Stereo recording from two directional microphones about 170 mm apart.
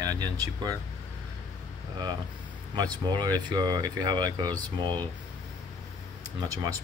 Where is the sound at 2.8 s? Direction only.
25° right (ahead or behind).